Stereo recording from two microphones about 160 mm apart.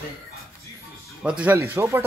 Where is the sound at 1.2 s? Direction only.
10° right (ahead or behind).